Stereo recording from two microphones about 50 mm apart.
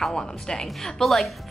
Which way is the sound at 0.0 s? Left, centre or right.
Centre.